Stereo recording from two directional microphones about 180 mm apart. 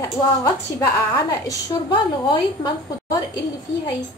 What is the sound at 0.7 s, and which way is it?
A woman's voice, 20° left (ahead or behind).